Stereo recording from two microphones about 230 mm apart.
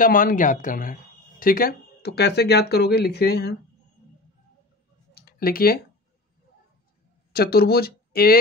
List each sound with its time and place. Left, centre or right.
0.0 s speech: left
5.1 s a sound: left
7.3 s speech: left